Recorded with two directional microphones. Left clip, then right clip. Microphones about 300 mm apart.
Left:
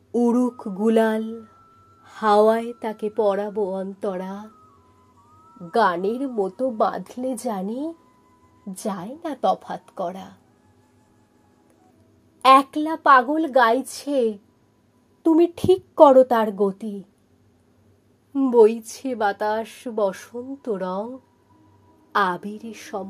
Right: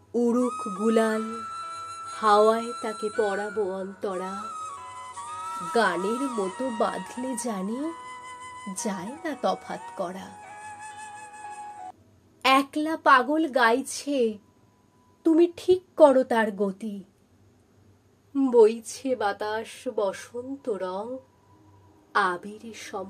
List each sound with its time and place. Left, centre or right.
0.1 s a woman's voice: centre
5.7 s speech: centre
12.4 s speech: centre
18.3 s a woman's voice: centre
22.1 s a woman's voice: left